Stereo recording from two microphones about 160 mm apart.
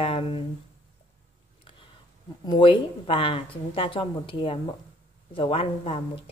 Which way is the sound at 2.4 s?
30° left (ahead or behind).